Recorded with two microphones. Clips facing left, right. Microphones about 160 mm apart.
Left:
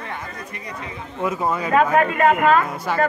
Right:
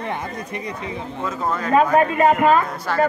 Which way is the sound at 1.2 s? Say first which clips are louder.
Left 3 dB; 10° left (ahead or behind).